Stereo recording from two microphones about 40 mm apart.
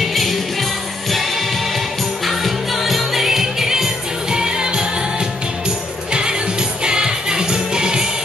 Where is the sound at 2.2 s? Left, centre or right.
Centre.